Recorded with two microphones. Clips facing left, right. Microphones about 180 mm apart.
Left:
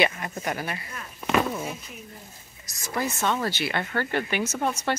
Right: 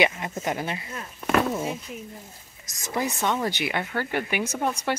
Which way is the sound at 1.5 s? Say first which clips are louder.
Right 4 dB; 25° right (ahead or behind).